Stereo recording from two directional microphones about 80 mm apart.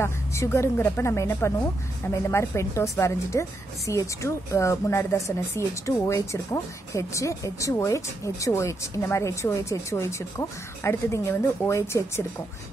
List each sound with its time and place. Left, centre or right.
0.0 s a woman's voice: left